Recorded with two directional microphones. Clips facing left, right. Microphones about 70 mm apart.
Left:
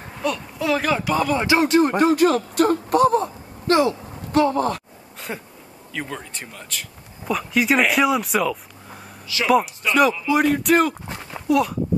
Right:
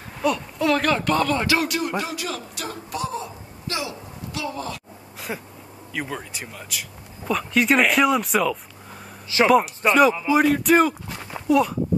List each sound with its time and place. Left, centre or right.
0.2 s speech: centre; by 4.8 s left
5.3 s speech: centre
11.1 s a sound: centre